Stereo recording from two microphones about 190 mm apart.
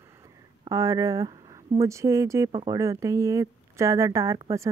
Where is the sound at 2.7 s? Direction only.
15° right (ahead or behind).